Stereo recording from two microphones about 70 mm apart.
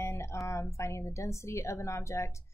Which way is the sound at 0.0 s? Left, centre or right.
Left.